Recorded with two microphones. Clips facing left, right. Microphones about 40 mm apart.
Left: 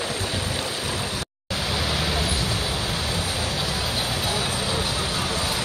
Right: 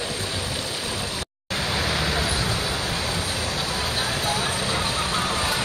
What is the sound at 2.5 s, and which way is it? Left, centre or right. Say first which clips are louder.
Waves: even; centre.